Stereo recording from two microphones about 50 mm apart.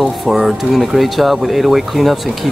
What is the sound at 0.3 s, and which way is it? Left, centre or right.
Speech, centre.